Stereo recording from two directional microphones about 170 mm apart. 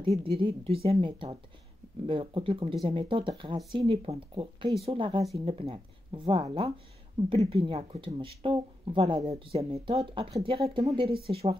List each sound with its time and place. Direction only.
0.2 s speech: 30° right (ahead or behind)